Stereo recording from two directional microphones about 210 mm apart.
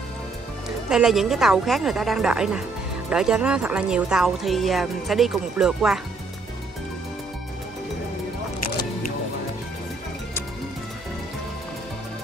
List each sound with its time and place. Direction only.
0.7 s speech: 5° right (ahead or behind)